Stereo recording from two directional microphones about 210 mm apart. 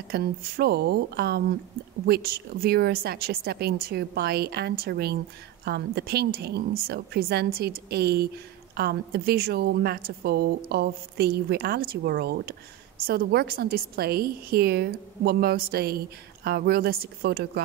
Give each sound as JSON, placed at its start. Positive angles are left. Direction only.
{"t": 0.1, "sound": "speech", "side_deg": -50}